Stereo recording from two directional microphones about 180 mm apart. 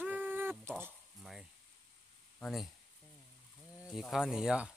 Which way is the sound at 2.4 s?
Centre (ahead or behind).